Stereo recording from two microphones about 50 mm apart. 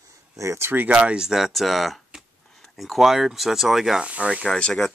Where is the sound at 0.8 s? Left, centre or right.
Right.